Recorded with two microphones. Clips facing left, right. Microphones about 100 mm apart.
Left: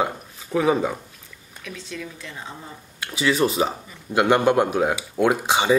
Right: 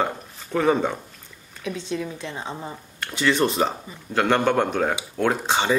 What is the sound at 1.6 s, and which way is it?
Speech, 25° right (ahead or behind).